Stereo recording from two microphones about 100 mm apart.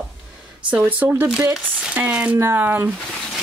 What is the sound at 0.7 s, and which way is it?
Speech, 15° right (ahead or behind).